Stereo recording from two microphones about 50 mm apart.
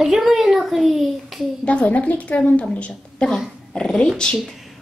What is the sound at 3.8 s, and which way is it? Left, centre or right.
Speech, centre.